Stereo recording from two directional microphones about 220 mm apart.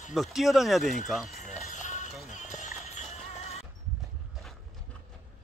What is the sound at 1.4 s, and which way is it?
Music, 35° left (ahead or behind).